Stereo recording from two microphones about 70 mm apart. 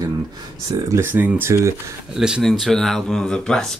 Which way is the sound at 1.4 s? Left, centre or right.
Right.